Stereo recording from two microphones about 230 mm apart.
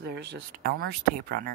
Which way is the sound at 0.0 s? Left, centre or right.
Right.